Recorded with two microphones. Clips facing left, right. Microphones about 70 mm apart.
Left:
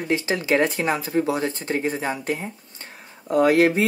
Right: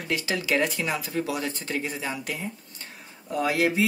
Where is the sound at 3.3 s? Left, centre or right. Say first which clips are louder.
Left 7 dB; left.